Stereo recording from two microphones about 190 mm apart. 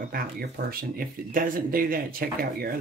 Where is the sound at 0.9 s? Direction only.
50° right (ahead or behind).